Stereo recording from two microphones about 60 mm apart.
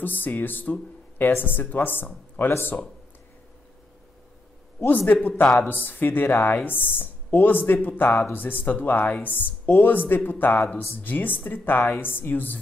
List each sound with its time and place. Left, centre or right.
0.0 s speech: left
4.7 s speech: left